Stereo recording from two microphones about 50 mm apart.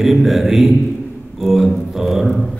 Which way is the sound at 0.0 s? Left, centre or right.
Centre.